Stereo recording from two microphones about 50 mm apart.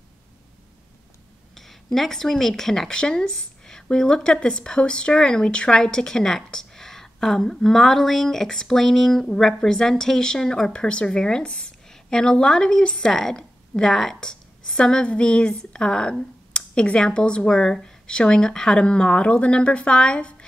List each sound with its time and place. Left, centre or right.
1.5 s a woman's voice: centre
17.5 s speech: centre; by 20.4 s left